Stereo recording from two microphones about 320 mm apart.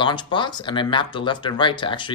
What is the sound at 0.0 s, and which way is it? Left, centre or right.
Speech, centre.